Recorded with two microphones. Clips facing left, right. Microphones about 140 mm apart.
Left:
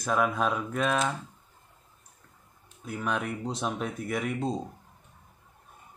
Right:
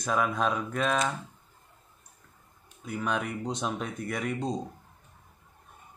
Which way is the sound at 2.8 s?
Centre (ahead or behind).